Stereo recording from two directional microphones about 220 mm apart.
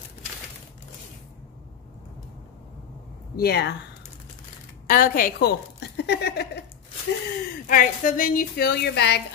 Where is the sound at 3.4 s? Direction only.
45° left (ahead or behind).